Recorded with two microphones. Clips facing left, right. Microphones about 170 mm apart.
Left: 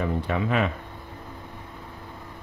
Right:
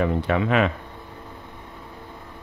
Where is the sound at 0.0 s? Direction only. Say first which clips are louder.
Right 4 dB; 90° right.